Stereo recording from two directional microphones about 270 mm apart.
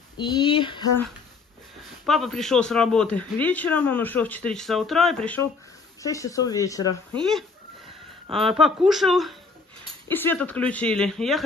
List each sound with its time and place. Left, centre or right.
0.2 s speech: centre
2.0 s speech: centre
8.5 s speech: centre